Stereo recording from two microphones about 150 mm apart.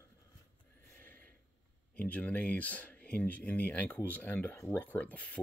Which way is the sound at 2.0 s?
10° left (ahead or behind).